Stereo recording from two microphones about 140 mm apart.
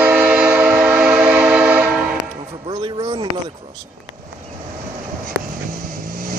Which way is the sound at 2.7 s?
35° right (ahead or behind).